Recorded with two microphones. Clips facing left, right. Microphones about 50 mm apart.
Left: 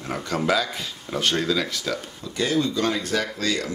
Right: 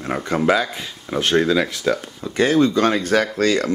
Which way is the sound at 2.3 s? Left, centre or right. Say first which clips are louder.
Right 7 dB; right.